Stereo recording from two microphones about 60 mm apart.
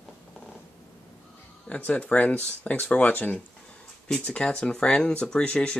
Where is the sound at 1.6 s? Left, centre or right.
Left.